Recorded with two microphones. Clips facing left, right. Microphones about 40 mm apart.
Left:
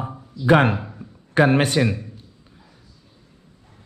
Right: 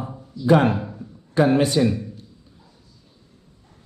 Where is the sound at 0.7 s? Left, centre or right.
Centre.